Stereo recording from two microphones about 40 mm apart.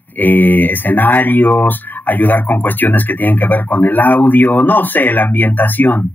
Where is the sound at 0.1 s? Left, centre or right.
Left.